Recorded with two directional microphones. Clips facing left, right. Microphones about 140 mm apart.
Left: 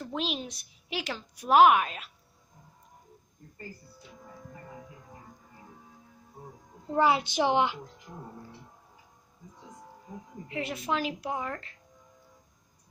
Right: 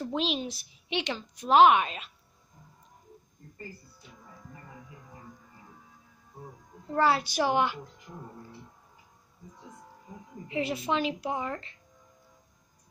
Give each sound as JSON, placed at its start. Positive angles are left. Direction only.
{"t": 0.0, "sound": "a woman's voice", "side_deg": 0}
{"t": 6.9, "sound": "a child's voice", "side_deg": 15}
{"t": 10.5, "sound": "a woman's voice", "side_deg": 0}